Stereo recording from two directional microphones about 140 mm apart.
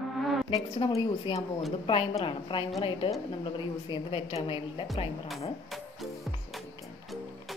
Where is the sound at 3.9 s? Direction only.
40° left (ahead or behind).